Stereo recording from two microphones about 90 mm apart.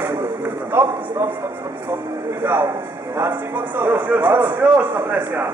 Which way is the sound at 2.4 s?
25° right (ahead or behind).